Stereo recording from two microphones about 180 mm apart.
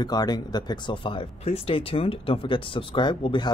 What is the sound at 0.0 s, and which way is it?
Speech, 25° left (ahead or behind).